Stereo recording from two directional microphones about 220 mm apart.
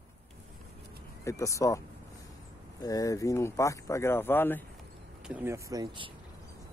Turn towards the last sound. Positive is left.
turn(degrees=-20)  # may be behind; listen again after turning